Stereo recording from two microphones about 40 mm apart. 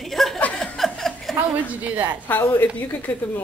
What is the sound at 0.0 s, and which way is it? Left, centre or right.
Chuckle, centre.